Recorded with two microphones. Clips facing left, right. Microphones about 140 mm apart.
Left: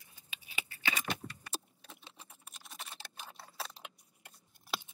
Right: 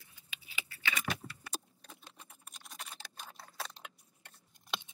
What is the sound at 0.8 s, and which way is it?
Keys jangling, 35° left (ahead or behind).